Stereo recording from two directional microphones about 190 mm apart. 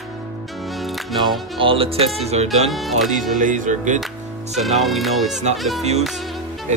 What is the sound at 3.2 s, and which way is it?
Speech, 45° right (ahead or behind).